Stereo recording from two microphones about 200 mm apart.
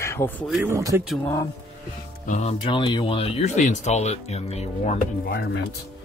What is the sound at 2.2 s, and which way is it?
Speech, 35° left (ahead or behind).